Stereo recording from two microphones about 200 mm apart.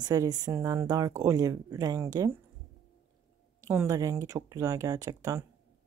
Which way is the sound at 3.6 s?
15° right (ahead or behind).